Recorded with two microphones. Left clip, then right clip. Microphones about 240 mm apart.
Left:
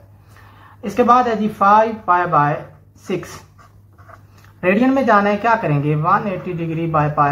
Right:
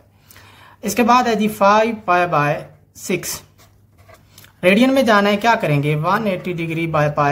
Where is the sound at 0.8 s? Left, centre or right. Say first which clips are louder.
Left 1 dB; right.